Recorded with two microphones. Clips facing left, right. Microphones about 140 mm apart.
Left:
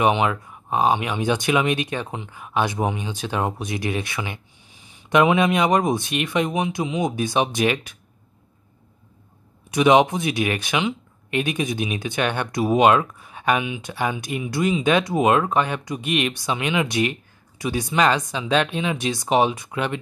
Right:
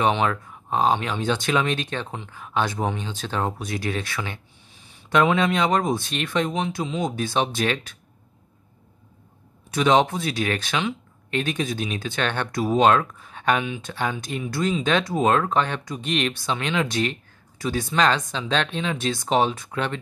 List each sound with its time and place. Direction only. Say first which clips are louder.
0.0 s speech: left 2 dB; 15° left (ahead or behind)
9.7 s speech: left 3 dB; 15° left (ahead or behind)